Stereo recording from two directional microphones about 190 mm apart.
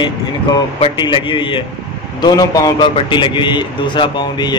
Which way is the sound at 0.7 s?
25° left (ahead or behind).